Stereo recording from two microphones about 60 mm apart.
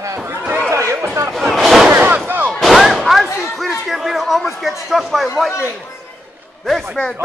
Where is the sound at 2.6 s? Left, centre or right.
Centre.